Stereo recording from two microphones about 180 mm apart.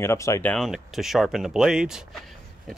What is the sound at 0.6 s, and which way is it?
Speech, centre (ahead or behind).